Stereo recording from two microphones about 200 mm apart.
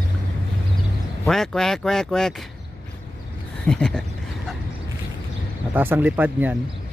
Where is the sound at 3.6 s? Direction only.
5° left (ahead or behind).